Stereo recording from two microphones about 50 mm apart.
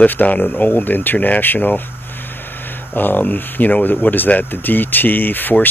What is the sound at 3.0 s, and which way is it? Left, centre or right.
Speech, left.